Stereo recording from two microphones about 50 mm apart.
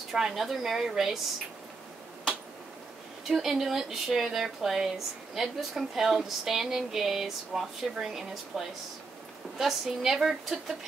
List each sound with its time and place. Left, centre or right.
0.1 s speech: centre
3.3 s speech: centre